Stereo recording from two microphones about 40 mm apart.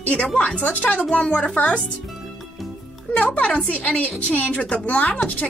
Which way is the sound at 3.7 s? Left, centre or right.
Left.